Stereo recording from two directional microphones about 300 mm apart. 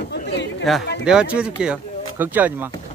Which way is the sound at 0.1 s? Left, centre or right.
Left.